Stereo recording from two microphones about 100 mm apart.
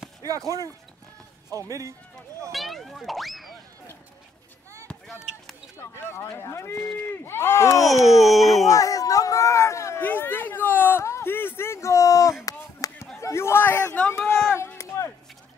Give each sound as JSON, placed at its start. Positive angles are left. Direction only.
{"t": 1.7, "sound": "speech", "side_deg": -30}
{"t": 2.5, "sound": "speech", "side_deg": 0}
{"t": 5.0, "sound": "basketball bounce", "side_deg": 0}
{"t": 6.3, "sound": "speech", "side_deg": 25}
{"t": 8.0, "sound": "speech", "side_deg": 0}
{"t": 8.6, "sound": "speech", "side_deg": 35}
{"t": 10.0, "sound": "a sound", "side_deg": 20}
{"t": 12.4, "sound": "chop", "side_deg": 35}
{"t": 13.2, "sound": "a man's voice", "side_deg": 25}
{"t": 13.9, "sound": "a sound", "side_deg": 10}